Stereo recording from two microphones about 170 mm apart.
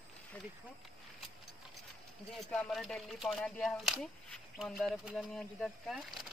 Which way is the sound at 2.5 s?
5° left (ahead or behind).